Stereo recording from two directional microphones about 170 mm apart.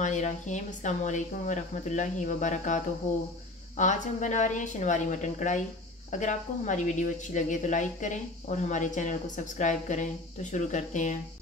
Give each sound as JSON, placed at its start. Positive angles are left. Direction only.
{"t": 0.0, "sound": "speech", "side_deg": 45}